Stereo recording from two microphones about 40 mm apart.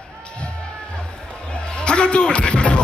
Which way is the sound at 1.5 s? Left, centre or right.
Left.